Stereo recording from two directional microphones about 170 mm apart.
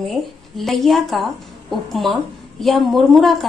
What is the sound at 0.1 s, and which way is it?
A woman's voice, centre (ahead or behind).